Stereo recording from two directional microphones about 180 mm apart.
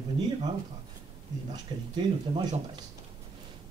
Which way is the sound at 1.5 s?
25° right (ahead or behind).